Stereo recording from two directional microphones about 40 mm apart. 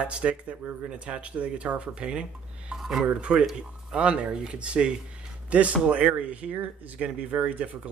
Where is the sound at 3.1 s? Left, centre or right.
Right.